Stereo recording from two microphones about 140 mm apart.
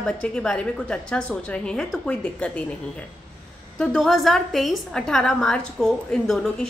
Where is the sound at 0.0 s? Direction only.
5° left (ahead or behind).